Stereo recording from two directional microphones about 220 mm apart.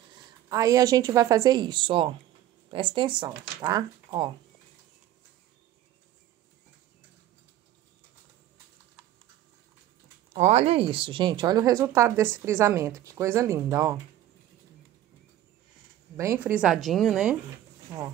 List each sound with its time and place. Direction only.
0.5 s a woman's voice: 15° right (ahead or behind)
10.3 s a woman's voice: 30° right (ahead or behind); by 13.9 s 15° right (ahead or behind)
16.2 s a woman's voice: 10° right (ahead or behind)
17.8 s speech: 15° right (ahead or behind)